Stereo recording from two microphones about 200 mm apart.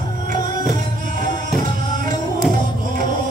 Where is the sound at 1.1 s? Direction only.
40° right (ahead or behind).